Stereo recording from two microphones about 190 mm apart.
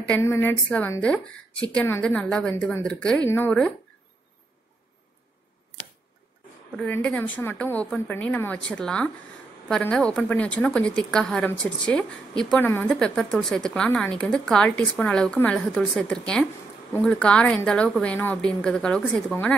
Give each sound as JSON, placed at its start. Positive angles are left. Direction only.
{"t": 0.1, "sound": "a woman's voice", "side_deg": 10}
{"t": 6.8, "sound": "a woman's voice", "side_deg": 5}